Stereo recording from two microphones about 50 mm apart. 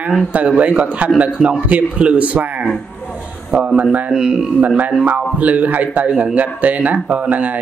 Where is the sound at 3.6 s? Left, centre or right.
Right.